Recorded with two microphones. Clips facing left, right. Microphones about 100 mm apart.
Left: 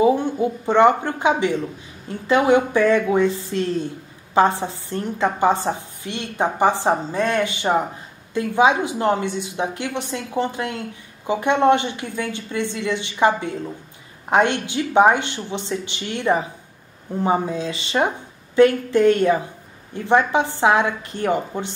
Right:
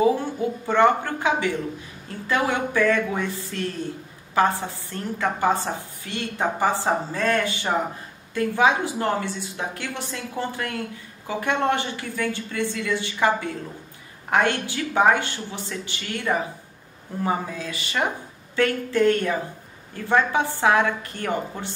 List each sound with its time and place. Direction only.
0.0 s a woman's voice: 20° left (ahead or behind)